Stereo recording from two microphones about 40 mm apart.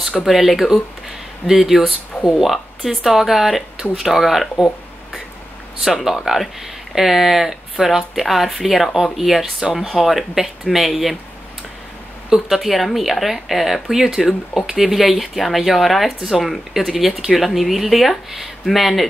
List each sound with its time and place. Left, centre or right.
0.2 s a woman's voice: centre
5.9 s speech: centre
12.4 s speech: centre